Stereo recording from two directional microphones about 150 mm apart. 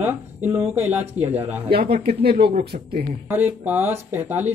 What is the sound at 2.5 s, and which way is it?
Speech, 90° right.